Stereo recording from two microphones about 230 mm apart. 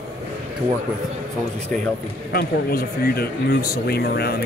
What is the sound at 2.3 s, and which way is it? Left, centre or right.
Speech, left.